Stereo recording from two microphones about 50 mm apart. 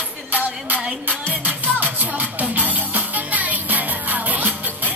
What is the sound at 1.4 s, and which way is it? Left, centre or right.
Music, right.